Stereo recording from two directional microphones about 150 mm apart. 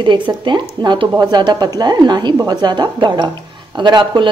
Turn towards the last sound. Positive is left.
turn(degrees=-30)  # may be behind; listen again after turning